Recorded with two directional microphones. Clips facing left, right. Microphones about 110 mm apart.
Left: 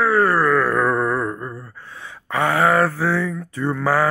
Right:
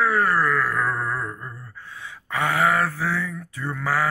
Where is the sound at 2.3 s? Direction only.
35° left (ahead or behind).